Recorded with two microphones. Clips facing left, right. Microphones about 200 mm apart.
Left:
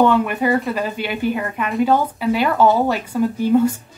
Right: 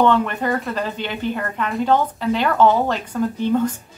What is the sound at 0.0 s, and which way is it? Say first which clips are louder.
A woman's voice: left 2 dB; 10° left (ahead or behind).